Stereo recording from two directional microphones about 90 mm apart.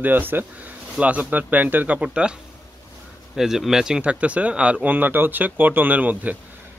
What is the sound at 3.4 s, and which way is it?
Speech, 5° right (ahead or behind).